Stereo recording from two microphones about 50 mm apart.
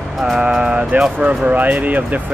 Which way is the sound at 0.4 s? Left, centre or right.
Right.